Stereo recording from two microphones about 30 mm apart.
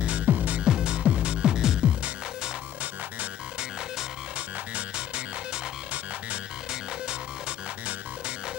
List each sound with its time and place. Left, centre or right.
0.0 s music: right
0.7 s music: right
0.9 s music: right
1.4 s music: right
4.9 s music: right